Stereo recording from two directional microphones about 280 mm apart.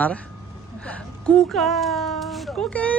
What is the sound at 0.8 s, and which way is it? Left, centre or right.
Speech, centre.